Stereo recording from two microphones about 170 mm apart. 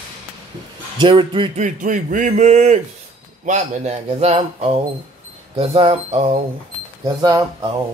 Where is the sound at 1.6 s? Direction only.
50° right (ahead or behind).